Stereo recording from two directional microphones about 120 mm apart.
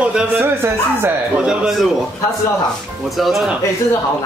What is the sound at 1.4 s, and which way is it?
Speech, 5° right (ahead or behind).